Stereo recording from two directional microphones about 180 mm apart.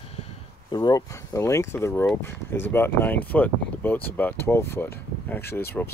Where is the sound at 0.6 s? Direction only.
20° left (ahead or behind).